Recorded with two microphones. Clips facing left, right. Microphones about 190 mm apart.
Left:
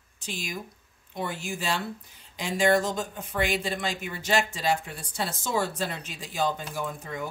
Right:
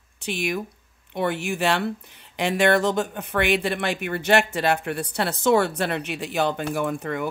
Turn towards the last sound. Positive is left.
turn(degrees=-65)  # may be behind; listen again after turning